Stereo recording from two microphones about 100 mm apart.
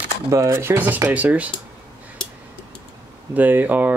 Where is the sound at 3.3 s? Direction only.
15° right (ahead or behind).